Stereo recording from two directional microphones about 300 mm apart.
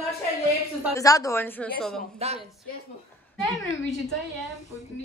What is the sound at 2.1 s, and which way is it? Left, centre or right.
Speech, right.